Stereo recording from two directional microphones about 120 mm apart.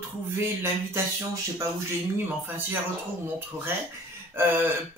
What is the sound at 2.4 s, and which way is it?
Speech, 15° right (ahead or behind).